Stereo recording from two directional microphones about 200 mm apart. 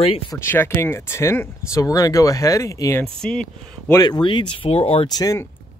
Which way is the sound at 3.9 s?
20° left (ahead or behind).